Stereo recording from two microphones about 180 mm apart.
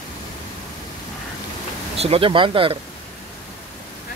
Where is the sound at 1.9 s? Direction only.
35° right (ahead or behind).